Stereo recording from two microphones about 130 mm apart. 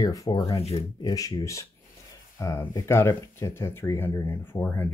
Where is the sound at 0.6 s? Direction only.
50° left (ahead or behind).